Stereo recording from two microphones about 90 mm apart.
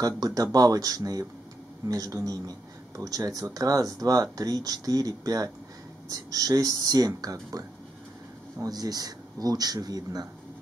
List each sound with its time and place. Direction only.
0.0 s speech: 45° right (ahead or behind)